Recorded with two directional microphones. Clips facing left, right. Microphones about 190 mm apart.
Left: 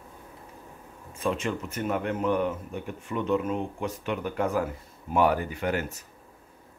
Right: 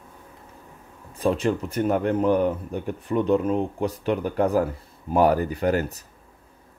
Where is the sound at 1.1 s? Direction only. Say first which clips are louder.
Right 6 dB; 35° right (ahead or behind).